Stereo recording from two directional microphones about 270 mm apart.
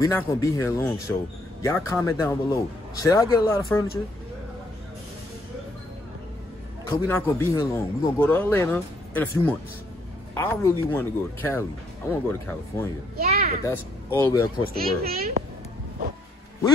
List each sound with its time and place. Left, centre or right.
0.0 s a man's voice: centre
6.9 s a man's voice: centre
13.2 s a child's voice: right
13.7 s a man's voice: centre
14.8 s a child's voice: right